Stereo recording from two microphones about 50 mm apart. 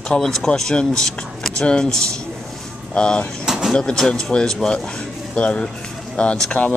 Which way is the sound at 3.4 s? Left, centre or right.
Centre.